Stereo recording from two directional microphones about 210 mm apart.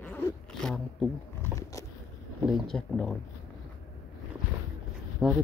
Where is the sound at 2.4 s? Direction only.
Centre (ahead or behind).